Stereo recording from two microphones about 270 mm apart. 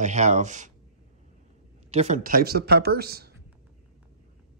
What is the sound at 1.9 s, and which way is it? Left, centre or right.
Speech, right.